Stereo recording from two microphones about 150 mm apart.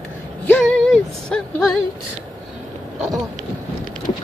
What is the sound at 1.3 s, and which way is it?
Speech, 5° left (ahead or behind).